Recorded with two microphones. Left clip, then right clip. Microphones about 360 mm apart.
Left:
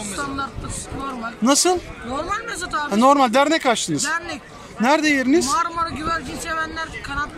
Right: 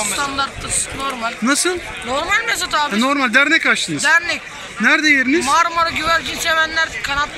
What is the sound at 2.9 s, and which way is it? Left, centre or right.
A man's voice, left.